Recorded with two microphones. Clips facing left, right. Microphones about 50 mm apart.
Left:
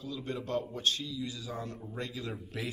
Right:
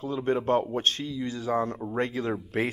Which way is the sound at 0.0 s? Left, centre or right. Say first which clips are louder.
Right 11 dB; right.